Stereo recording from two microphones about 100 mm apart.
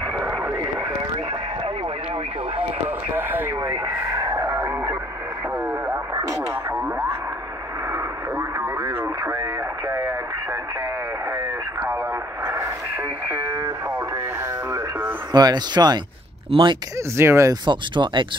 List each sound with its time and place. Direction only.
0.2 s a sound: 25° right (ahead or behind)
3.2 s radio: 20° right (ahead or behind)
4.2 s a sound: 35° right (ahead or behind)
7.9 s radio: 30° right (ahead or behind)
13.5 s radio: 40° right (ahead or behind)
14.7 s radio: 25° right (ahead or behind)
15.3 s speech: 45° right (ahead or behind)
16.4 s speech: 55° right (ahead or behind)
17.2 s speech: 30° right (ahead or behind)
17.6 s speech: 50° right (ahead or behind)